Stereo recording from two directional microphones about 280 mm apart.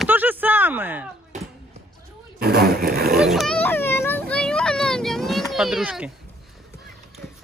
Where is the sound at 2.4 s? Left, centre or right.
Right.